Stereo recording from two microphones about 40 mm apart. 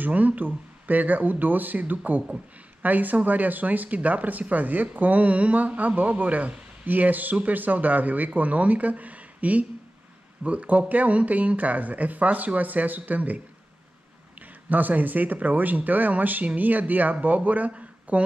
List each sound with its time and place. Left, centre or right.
0.0 s speech: right
14.4 s speech: right